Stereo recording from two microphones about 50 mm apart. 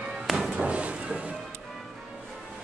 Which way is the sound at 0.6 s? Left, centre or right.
Right.